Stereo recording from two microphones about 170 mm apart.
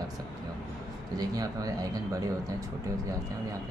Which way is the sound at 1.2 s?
20° right (ahead or behind).